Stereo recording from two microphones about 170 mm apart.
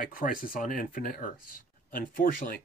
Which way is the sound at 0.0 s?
55° left (ahead or behind).